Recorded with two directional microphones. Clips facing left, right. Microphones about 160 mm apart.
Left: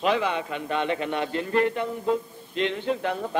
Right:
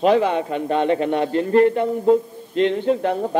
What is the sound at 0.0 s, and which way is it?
A man's voice, 40° right (ahead or behind).